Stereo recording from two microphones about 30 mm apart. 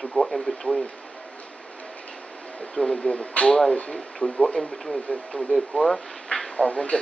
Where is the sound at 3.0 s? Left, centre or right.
Left.